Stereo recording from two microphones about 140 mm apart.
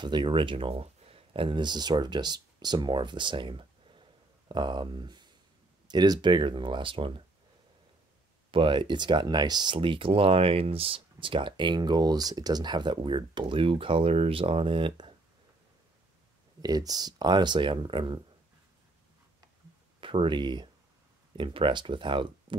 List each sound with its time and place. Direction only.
0.0 s speech: 35° right (ahead or behind)
8.5 s speech: 35° right (ahead or behind)
16.6 s speech: 25° right (ahead or behind)
20.0 s speech: 35° right (ahead or behind)